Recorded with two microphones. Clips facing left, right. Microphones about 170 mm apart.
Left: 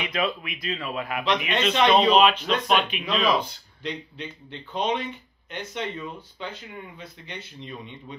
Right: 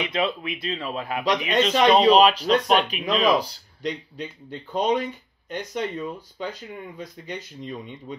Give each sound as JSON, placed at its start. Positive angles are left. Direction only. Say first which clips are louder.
{"t": 0.1, "sound": "a man's voice", "louder": "right 2 dB", "side_deg": -30}